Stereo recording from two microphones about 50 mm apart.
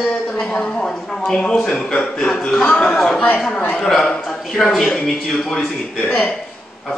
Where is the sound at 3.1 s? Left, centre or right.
Left.